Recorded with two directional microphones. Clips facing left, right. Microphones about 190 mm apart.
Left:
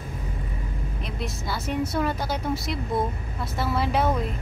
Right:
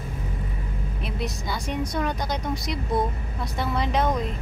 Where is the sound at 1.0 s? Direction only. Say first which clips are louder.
Right 2 dB; centre (ahead or behind).